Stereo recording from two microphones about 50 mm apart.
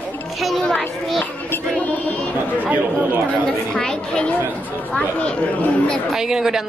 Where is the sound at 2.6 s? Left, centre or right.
Right.